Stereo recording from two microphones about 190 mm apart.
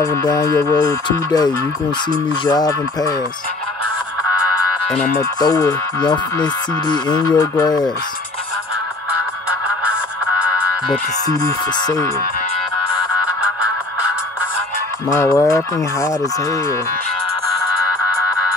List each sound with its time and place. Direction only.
0.0 s speech: 20° left (ahead or behind)
4.8 s speech: 5° left (ahead or behind)
5.4 s speech: 20° left (ahead or behind)
11.2 s speech: 20° left (ahead or behind)
15.0 s speech: 20° left (ahead or behind)